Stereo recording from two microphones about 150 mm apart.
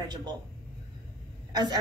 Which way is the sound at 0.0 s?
25° right (ahead or behind).